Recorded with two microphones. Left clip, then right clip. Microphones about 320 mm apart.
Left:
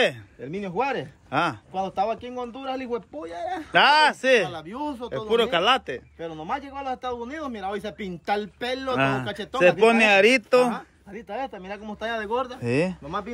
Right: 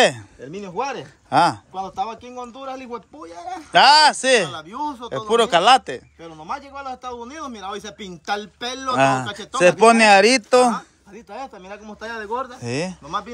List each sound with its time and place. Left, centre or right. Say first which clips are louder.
0.0 s speech: right 6 dB; centre
1.7 s a man's voice: left 1 dB; left
3.7 s a man's voice: right 5 dB; centre
6.4 s a man's voice: right 1 dB; left
8.8 s a man's voice: right 7 dB; centre
11.8 s a man's voice: left 2 dB; left
12.4 s a man's voice: left 2 dB; centre